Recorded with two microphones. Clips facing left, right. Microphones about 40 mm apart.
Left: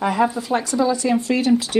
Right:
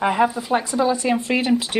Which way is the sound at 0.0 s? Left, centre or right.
Right.